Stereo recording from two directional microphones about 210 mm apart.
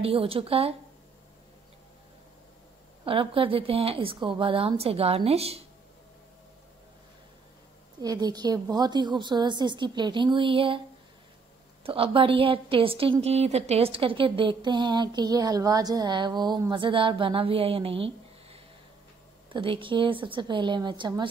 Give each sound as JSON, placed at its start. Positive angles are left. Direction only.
{"t": 0.0, "sound": "a woman's voice", "side_deg": -25}
{"t": 3.1, "sound": "a woman's voice", "side_deg": -25}
{"t": 8.0, "sound": "a woman's voice", "side_deg": -20}
{"t": 11.8, "sound": "a woman's voice", "side_deg": -25}